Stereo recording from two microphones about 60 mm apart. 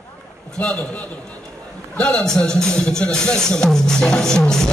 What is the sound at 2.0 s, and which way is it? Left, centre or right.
Music, centre.